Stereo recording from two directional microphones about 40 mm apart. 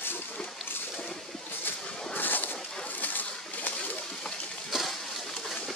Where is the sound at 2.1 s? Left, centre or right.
Left.